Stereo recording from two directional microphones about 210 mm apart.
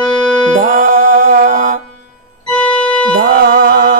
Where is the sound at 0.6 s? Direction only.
45° right (ahead or behind).